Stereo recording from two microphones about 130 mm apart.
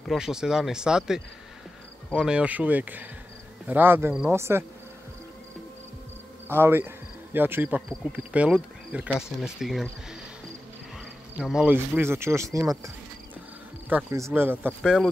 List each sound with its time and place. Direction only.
0.0 s speech: centre (ahead or behind); by 4.6 s 20° right (ahead or behind)
6.5 s speech: 15° right (ahead or behind); by 9.8 s centre (ahead or behind)
11.3 s speech: 10° right (ahead or behind); by 12.9 s 25° right (ahead or behind)
14.1 s speech: 20° right (ahead or behind)